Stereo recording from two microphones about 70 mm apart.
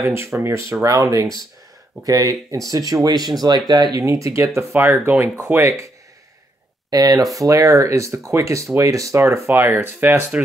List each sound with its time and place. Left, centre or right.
0.0 s speech: right
3.4 s speech: right
4.0 s speech: right
4.7 s speech: right
5.6 s speech: right
6.9 s speech: right
7.3 s speech: right